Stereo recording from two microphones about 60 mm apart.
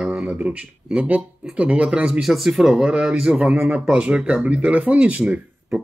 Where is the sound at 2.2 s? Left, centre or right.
Centre.